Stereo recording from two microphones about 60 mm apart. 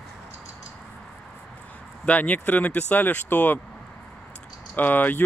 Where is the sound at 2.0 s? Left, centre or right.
Left.